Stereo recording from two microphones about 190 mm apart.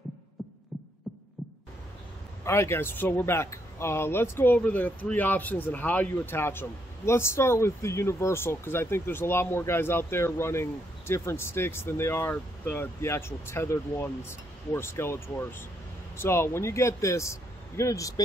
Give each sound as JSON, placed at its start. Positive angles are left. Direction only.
{"t": 2.4, "sound": "speech", "side_deg": 15}